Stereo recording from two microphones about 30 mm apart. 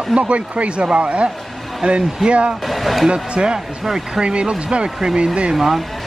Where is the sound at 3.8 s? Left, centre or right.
Centre.